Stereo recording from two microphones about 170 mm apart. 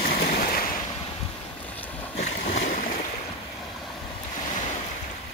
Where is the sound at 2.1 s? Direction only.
80° left.